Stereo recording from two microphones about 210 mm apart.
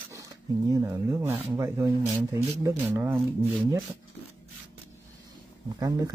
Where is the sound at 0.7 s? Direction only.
15° right (ahead or behind).